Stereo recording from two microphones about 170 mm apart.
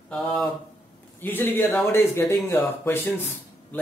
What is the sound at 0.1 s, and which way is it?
Speech, centre (ahead or behind).